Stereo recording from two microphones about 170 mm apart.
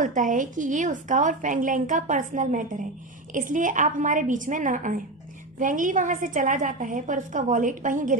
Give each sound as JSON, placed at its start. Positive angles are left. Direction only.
{"t": 0.0, "sound": "a woman's voice", "side_deg": -50}